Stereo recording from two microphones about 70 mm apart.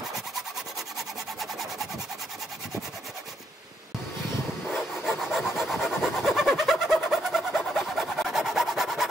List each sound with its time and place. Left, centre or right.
5.0 s wood: centre